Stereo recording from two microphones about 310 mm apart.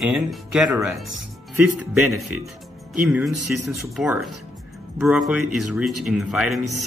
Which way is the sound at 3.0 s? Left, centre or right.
Centre.